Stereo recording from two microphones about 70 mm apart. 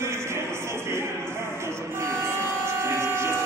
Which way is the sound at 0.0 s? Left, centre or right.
Right.